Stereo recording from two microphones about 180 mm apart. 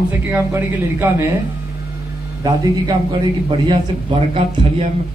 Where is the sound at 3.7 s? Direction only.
30° right (ahead or behind).